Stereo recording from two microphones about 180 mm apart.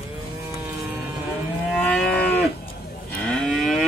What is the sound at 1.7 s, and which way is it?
Livestock, 5° left (ahead or behind).